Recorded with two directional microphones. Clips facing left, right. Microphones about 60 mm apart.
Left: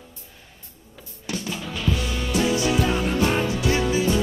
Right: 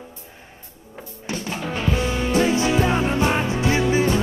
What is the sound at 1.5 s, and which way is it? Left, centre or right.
Music, right.